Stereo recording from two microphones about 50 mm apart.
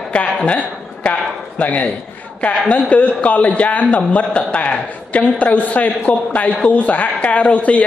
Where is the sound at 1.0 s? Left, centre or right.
Left.